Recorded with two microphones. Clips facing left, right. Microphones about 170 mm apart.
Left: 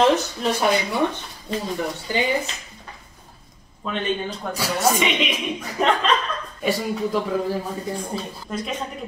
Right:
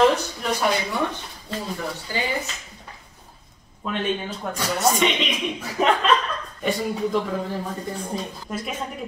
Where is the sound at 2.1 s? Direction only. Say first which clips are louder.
Left 5 dB; 20° left (ahead or behind).